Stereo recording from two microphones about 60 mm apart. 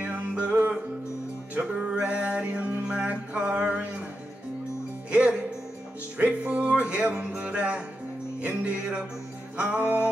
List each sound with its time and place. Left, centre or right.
0.0 s music: right
5.1 s music: centre